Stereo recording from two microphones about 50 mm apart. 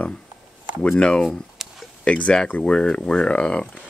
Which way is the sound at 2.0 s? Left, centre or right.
Left.